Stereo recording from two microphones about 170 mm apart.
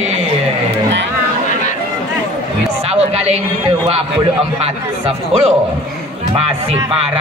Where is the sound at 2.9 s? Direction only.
35° right (ahead or behind).